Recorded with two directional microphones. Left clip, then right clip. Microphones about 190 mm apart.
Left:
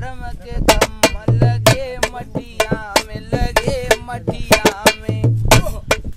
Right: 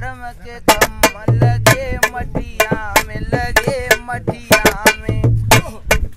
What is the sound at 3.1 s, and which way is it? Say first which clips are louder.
Music: right 3 dB; 15° left (ahead or behind).